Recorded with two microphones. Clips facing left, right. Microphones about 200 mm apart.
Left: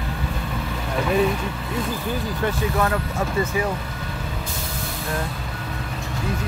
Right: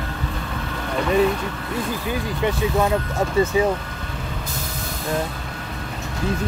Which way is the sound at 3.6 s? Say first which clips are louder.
Right 6 dB; 25° right (ahead or behind).